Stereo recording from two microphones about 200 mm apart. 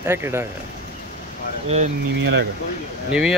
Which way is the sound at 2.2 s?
60° right (ahead or behind).